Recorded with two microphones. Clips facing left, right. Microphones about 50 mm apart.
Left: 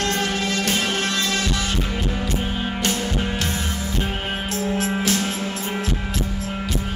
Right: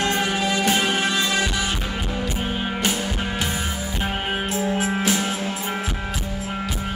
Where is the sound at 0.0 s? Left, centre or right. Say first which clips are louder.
Right 1 dB; centre.